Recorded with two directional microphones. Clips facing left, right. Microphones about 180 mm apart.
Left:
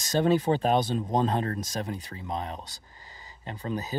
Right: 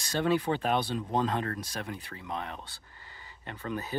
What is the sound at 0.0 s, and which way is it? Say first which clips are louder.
Speech: left 4 dB; 40° left (ahead or behind).